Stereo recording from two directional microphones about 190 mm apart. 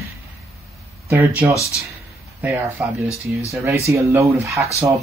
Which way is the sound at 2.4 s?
15° right (ahead or behind).